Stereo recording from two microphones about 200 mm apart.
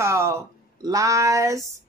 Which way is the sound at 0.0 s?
15° right (ahead or behind).